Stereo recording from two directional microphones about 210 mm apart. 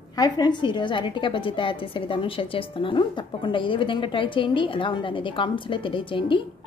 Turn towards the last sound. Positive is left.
turn(degrees=25)  # may be behind; listen again after turning